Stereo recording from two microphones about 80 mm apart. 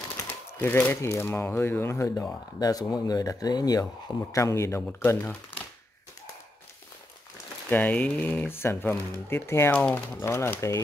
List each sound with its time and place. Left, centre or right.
0.3 s typewriter: left
1.0 s speech: left
2.6 s speech: left
4.3 s speech: left
7.7 s speech: centre